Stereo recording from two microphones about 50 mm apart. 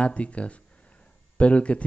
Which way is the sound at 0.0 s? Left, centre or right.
Left.